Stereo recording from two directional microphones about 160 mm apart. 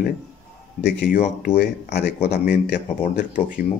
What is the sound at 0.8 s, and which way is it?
Speech, 75° left (ahead or behind).